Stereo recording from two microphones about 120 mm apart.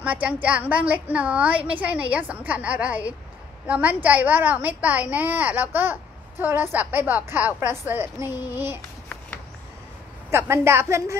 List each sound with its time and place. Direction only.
0.0 s a woman's voice: 10° right (ahead or behind)
10.3 s a woman's voice: 20° right (ahead or behind)